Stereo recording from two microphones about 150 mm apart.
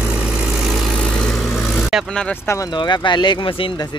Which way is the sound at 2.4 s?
20° left (ahead or behind).